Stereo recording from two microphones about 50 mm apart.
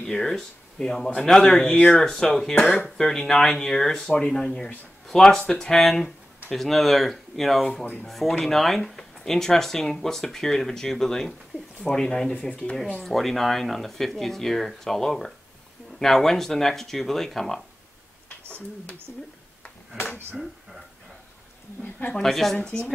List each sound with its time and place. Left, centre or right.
0.0 s speech: centre
2.6 s speech: left
3.0 s speech: centre
12.4 s speech: left
13.0 s speech: centre
19.1 s speech: left
22.2 s speech: centre